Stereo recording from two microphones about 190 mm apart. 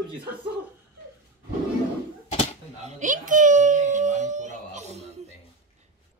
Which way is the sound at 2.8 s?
40° right (ahead or behind).